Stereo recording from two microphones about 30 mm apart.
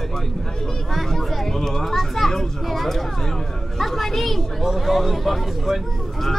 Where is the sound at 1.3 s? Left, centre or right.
Centre.